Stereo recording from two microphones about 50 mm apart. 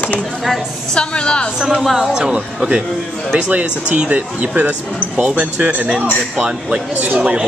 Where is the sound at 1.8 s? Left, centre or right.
Centre.